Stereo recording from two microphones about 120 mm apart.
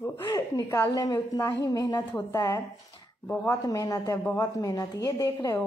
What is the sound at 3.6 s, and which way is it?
A woman's voice, 30° left (ahead or behind).